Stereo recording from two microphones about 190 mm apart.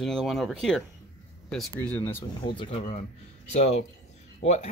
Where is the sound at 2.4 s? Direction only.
25° left (ahead or behind).